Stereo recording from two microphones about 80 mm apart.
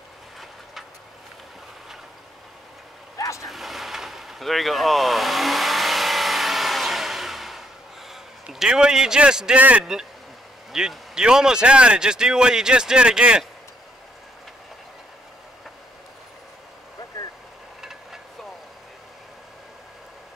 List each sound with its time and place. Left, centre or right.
3.2 s vehicle: left
3.4 s vehicle: centre
8.1 s a man's voice: centre
10.7 s speech: centre
17.8 s vehicle: centre